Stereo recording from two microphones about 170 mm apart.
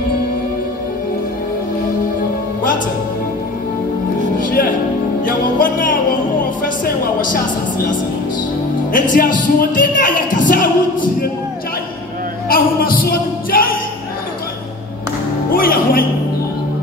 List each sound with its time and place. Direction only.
4.4 s music: 55° left (ahead or behind)
6.6 s a sound: 50° left (ahead or behind)
8.9 s speech: 50° left (ahead or behind)
12.4 s music: 60° left (ahead or behind)
15.5 s music: 60° left (ahead or behind)